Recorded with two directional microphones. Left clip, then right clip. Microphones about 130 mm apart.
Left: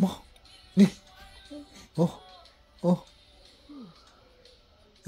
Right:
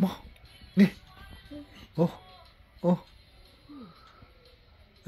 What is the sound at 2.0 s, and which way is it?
Speech, 30° left (ahead or behind).